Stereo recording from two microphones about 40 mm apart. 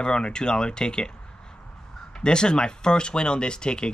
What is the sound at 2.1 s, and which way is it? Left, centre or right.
Speech, left.